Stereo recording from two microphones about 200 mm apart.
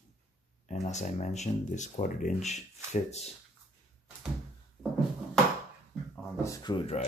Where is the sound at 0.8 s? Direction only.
35° left (ahead or behind).